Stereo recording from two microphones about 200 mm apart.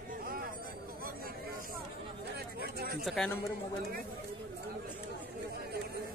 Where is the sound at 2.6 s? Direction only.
50° right (ahead or behind).